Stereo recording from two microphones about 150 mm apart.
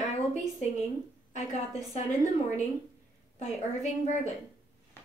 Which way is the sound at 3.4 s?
50° left (ahead or behind).